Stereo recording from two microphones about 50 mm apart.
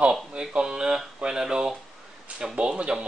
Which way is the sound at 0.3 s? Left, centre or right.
Centre.